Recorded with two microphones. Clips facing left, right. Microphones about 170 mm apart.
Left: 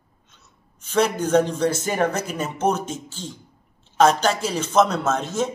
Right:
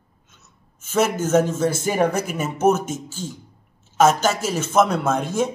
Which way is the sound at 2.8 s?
50° right (ahead or behind).